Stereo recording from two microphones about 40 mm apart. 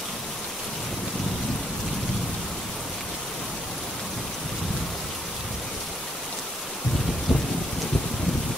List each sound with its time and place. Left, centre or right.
7.3 s rain: right